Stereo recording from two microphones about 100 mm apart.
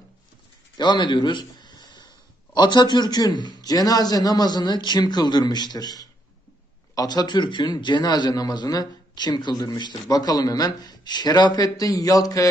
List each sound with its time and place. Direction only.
0.7 s a man's voice: 50° left (ahead or behind)